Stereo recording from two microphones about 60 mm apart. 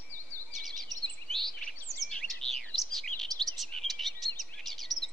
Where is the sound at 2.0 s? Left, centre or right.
Centre.